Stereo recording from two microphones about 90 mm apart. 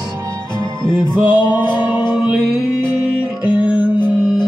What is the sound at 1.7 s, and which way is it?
Music, 60° left (ahead or behind).